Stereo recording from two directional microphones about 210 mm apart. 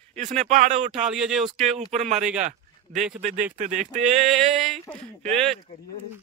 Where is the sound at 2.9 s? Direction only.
Centre (ahead or behind).